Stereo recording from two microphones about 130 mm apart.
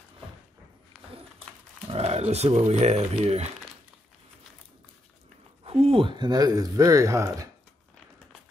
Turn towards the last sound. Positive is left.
turn(degrees=-25)  # may be behind; listen again after turning